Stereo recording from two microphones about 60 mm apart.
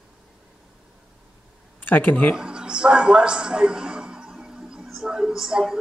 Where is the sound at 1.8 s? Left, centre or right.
Left.